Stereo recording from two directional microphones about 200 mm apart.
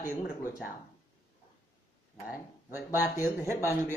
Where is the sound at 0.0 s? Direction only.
15° left (ahead or behind).